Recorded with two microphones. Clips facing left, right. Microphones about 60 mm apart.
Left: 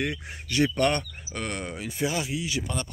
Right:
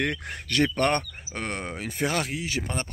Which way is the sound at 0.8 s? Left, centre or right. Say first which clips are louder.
Right 1 dB; right.